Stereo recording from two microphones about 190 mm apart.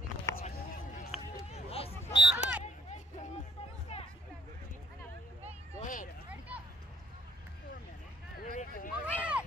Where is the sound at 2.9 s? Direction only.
40° left (ahead or behind).